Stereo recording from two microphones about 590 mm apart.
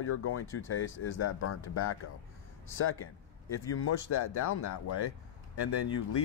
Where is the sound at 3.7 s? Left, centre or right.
Left.